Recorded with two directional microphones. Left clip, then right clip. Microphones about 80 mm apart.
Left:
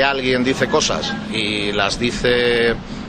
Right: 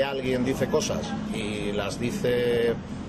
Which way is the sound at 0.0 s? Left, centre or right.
Left.